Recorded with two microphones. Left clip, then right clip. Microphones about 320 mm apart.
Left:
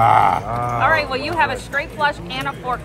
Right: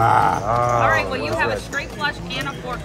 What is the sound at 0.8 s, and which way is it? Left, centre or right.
Speech, centre.